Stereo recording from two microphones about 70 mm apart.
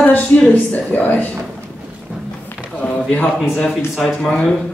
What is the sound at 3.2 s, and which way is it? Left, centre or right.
Speech, centre.